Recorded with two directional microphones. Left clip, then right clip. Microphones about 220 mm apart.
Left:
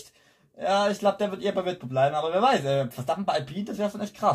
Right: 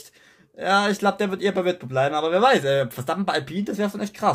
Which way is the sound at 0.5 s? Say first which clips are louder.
Right 3 dB; 45° right (ahead or behind).